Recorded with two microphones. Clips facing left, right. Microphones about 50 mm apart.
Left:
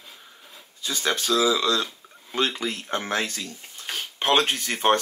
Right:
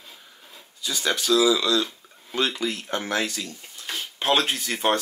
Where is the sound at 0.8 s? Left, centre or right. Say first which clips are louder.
Even; left.